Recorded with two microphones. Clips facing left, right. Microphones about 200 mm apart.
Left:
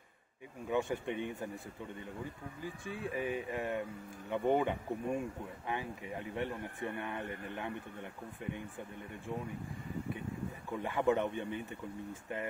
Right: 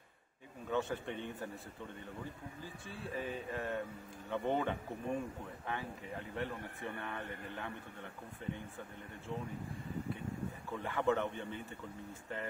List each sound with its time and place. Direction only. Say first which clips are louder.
0.7 s speech: left 3 dB; 15° left (ahead or behind)
2.6 s speech: left 7 dB; 15° left (ahead or behind)
10.8 s speech: left 3 dB; 15° left (ahead or behind)